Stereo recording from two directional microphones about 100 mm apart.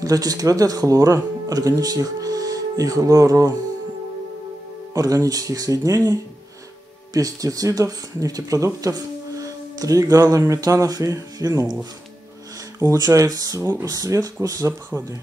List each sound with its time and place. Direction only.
0.0 s speech: 35° right (ahead or behind)
4.9 s speech: 35° right (ahead or behind)
7.2 s speech: 35° right (ahead or behind)
14.7 s speech: 20° right (ahead or behind)